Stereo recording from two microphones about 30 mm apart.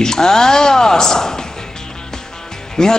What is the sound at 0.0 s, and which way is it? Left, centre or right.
Speech, left.